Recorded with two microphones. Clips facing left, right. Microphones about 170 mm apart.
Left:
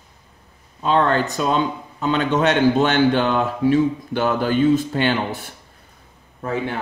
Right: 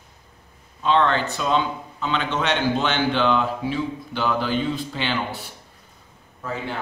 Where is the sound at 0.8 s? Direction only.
45° left (ahead or behind).